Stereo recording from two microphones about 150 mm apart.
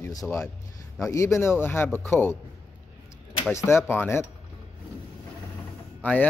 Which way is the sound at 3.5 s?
15° left (ahead or behind).